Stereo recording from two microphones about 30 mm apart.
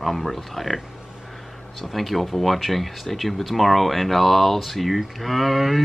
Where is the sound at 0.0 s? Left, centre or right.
Centre.